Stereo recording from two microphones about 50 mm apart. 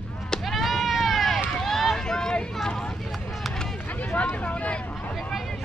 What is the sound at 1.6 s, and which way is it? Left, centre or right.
Run, centre.